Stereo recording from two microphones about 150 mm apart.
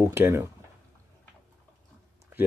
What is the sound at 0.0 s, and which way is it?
Speech, 15° right (ahead or behind).